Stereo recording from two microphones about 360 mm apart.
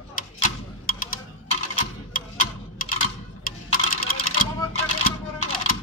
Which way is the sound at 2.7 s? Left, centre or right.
Left.